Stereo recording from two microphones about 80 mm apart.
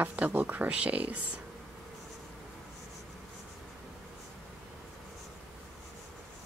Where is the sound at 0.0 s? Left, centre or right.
Centre.